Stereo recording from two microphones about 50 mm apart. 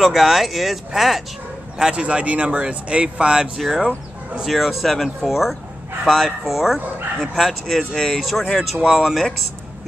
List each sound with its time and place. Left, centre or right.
0.0 s speech: centre
1.8 s speech: centre
3.5 s speech: centre